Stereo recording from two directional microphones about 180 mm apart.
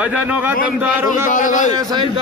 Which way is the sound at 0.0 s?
5° right (ahead or behind).